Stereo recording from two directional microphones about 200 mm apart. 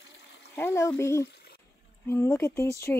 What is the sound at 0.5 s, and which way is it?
Speech, 10° left (ahead or behind).